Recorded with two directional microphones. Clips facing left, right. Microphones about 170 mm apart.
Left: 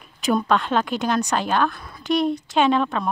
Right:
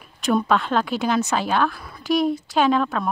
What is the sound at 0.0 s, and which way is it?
A woman's voice, centre (ahead or behind).